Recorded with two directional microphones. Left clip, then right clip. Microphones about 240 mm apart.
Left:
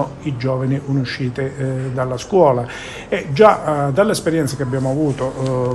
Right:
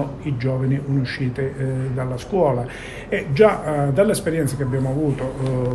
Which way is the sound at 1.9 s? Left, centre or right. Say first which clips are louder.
Left 7 dB; left.